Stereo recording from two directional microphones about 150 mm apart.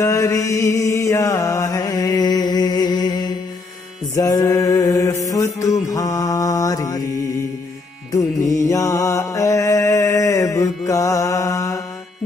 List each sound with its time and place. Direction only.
0.0 s mantra: 20° left (ahead or behind)
8.6 s mantra: 20° left (ahead or behind)